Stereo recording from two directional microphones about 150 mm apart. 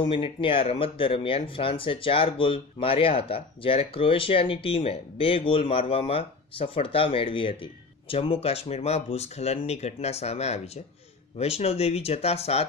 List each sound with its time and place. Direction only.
0.0 s speech: 35° left (ahead or behind)